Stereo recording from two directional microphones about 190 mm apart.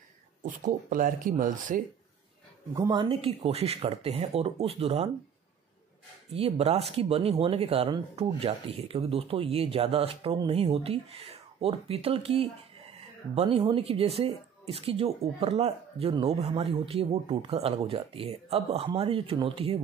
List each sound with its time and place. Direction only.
0.4 s speech: 45° right (ahead or behind)
2.7 s speech: 20° right (ahead or behind)
6.3 s speech: 30° right (ahead or behind)